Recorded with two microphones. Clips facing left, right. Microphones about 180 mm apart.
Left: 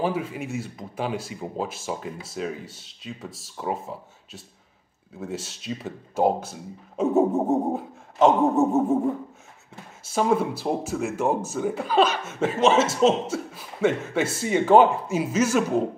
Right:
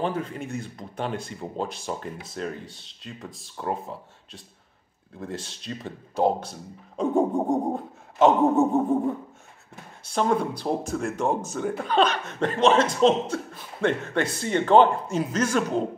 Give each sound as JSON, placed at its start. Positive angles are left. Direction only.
{"t": 0.0, "sound": "speech", "side_deg": 5}